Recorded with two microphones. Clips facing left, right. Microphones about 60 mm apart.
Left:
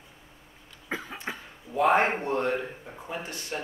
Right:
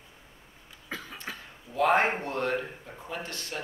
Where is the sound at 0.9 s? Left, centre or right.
Left.